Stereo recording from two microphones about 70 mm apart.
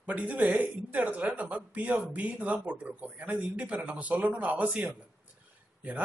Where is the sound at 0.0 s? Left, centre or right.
Centre.